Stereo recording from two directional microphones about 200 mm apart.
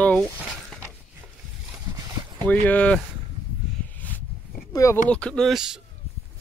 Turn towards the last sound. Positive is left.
turn(degrees=-5)  # may be behind; listen again after turning